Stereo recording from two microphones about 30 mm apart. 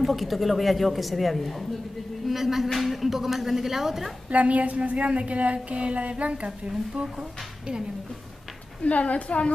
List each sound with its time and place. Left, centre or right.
0.0 s a woman's voice: centre
2.2 s speech: centre
4.3 s a sound: right
8.8 s a woman's voice: left